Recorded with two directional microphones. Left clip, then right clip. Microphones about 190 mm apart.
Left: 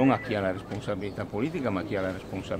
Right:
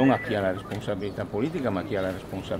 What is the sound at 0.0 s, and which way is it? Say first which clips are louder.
Speech: right 2 dB; 10° left (ahead or behind).